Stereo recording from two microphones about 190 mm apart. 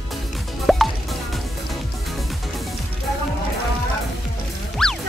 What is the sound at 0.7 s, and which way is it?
Music, centre (ahead or behind).